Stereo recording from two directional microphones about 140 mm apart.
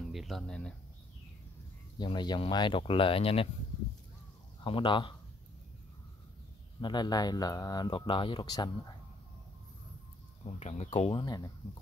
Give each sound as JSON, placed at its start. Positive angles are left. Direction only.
{"t": 0.0, "sound": "speech", "side_deg": 0}
{"t": 2.0, "sound": "speech", "side_deg": 30}
{"t": 4.6, "sound": "speech", "side_deg": 35}
{"t": 6.8, "sound": "speech", "side_deg": 30}
{"t": 10.6, "sound": "speech", "side_deg": 50}
{"t": 11.2, "sound": "speech", "side_deg": 30}